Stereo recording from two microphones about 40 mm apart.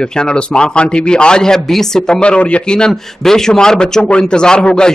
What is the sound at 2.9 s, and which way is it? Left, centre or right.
Speech, centre.